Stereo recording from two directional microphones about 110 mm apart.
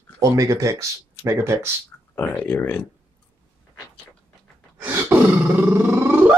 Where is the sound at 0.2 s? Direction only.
30° right (ahead or behind).